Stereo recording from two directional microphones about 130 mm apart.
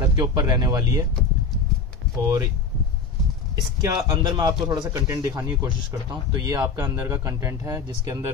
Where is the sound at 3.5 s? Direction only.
30° right (ahead or behind).